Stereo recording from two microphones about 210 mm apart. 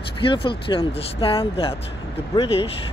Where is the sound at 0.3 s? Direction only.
25° left (ahead or behind).